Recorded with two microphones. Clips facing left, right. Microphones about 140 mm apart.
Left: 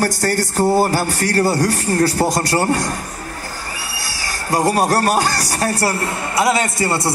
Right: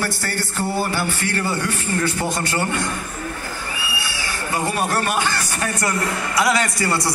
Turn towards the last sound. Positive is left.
turn(degrees=25)  # may be behind; listen again after turning